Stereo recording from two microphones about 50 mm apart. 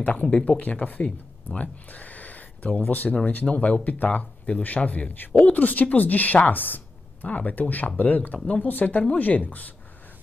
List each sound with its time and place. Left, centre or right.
0.0 s speech: left
1.0 s a sound: left
2.8 s speech: left